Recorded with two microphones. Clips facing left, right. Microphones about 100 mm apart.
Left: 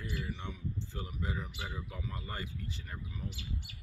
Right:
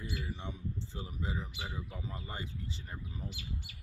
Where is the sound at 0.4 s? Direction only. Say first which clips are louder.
Even; 25° right (ahead or behind).